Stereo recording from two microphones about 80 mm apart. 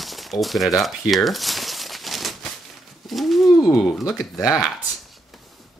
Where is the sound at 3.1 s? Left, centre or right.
Centre.